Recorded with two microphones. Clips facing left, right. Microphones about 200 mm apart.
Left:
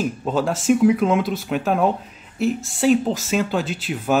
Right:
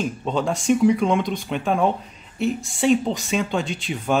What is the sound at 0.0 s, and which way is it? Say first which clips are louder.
Speech: left 2 dB; 5° left (ahead or behind).